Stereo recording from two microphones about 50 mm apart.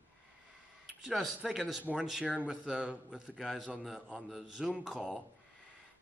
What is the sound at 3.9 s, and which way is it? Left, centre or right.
A man's voice, centre.